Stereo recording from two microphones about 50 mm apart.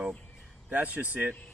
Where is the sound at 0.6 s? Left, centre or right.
Right.